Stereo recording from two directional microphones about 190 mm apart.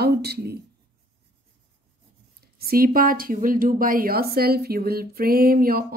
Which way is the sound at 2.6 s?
50° right (ahead or behind).